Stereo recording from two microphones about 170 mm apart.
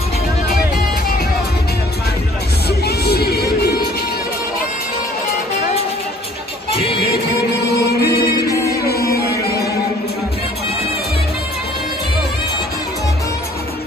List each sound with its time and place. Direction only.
2.8 s music: 70° left (ahead or behind)
6.7 s music: 30° left (ahead or behind)
8.0 s music: 65° left (ahead or behind)